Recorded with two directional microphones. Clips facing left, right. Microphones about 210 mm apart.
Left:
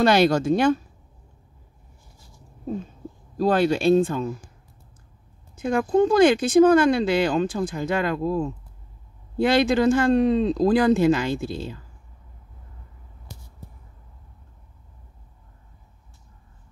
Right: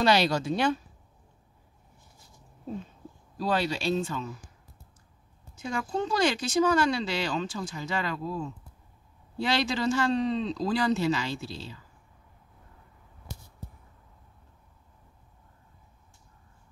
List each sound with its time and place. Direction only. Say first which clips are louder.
0.0 s speech: left 6 dB; 50° left (ahead or behind)
3.3 s speech: left 8 dB; 50° left (ahead or behind)
5.6 s speech: left 11 dB; 55° left (ahead or behind)